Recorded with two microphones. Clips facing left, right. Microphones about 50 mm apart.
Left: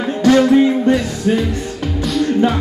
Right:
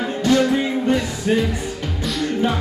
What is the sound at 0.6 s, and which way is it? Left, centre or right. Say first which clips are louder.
Music: left 7 dB; centre.